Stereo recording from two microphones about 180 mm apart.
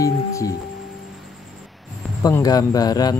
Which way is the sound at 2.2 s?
20° left (ahead or behind).